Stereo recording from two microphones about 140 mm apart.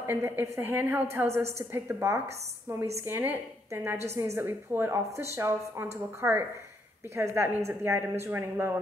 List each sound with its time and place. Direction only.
0.0 s a woman's voice: 15° right (ahead or behind)